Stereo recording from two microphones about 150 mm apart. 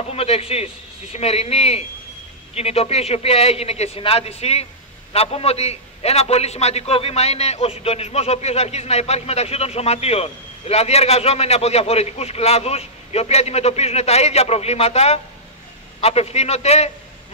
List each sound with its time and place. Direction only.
0.1 s a man's voice: 40° left (ahead or behind)